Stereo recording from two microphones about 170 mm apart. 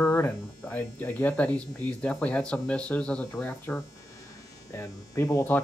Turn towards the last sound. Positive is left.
turn(degrees=15)  # may be behind; listen again after turning